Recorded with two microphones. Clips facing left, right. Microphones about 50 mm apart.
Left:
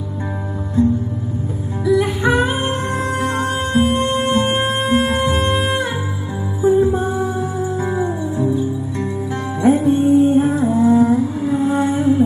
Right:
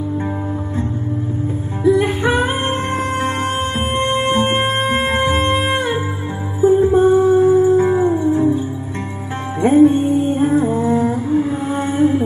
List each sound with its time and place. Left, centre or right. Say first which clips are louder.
1.9 s music: right 1 dB; right